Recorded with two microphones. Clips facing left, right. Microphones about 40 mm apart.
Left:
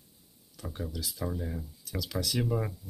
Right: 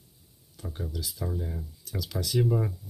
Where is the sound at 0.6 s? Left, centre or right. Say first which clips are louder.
Right 1 dB; centre.